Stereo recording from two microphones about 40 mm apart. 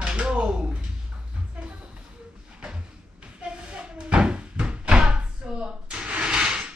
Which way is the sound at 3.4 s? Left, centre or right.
Right.